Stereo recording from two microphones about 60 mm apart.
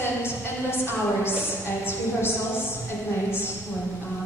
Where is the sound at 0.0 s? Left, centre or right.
Left.